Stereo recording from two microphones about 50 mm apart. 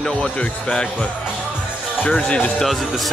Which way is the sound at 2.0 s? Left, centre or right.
Left.